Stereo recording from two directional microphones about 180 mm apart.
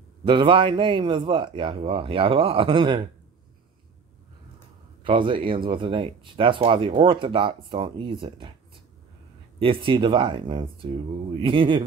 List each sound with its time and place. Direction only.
0.3 s speech: 30° right (ahead or behind)
5.0 s speech: 30° right (ahead or behind)
9.6 s speech: 30° right (ahead or behind)